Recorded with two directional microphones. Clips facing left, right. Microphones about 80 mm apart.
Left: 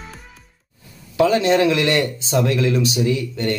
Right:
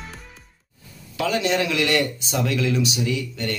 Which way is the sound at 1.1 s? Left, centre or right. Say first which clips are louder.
Left 7 dB; left.